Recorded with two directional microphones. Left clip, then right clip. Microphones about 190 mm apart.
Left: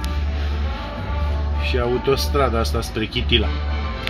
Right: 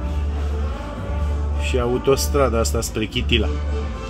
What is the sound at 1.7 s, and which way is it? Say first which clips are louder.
Speech: right 1 dB; 25° right (ahead or behind).